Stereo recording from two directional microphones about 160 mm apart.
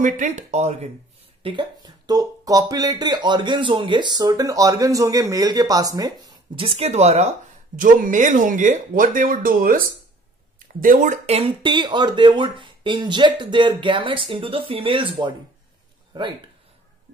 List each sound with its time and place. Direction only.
0.0 s speech: 50° right (ahead or behind)
1.4 s speech: 30° right (ahead or behind)
6.2 s speech: 35° right (ahead or behind)
7.7 s speech: 55° right (ahead or behind); by 16.3 s 30° right (ahead or behind)